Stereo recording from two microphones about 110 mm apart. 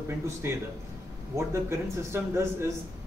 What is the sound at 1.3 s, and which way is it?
Speech, 25° right (ahead or behind).